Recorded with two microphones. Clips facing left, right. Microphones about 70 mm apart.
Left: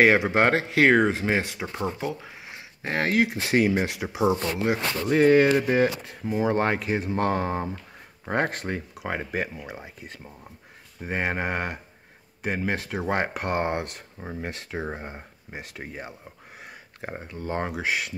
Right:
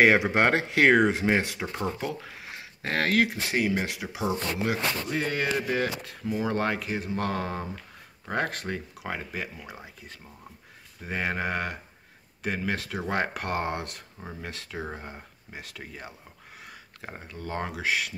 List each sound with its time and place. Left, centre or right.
0.0 s speech: centre
3.4 s speech: left
5.1 s speech: left
5.5 s speech: left
9.6 s speech: left
11.0 s speech: left